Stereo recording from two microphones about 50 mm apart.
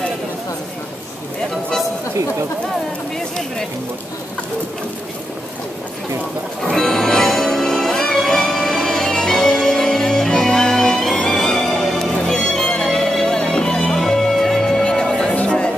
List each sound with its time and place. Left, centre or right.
6.6 s music: centre